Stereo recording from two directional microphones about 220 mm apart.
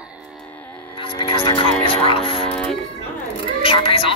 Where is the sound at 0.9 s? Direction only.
20° left (ahead or behind).